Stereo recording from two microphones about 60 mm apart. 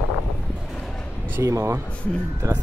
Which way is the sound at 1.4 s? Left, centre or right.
Right.